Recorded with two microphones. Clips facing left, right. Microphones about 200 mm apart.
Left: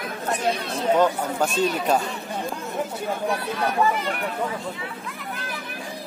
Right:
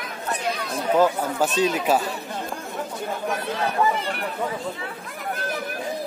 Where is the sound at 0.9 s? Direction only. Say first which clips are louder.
Right 2 dB; 5° right (ahead or behind).